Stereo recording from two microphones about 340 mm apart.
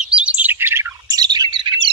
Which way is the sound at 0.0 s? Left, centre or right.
Centre.